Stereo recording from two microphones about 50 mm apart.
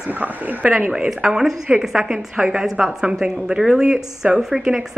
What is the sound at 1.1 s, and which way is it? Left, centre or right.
A woman's voice, centre.